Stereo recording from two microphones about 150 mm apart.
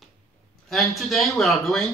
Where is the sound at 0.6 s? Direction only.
Centre (ahead or behind).